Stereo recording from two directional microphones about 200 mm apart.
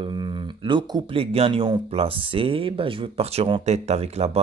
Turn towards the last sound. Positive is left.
turn(degrees=-30)  # may be behind; listen again after turning